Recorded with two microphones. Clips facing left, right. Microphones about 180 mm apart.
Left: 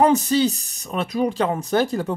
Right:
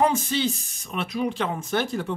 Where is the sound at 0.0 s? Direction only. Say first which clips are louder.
Left 6 dB; 40° left (ahead or behind).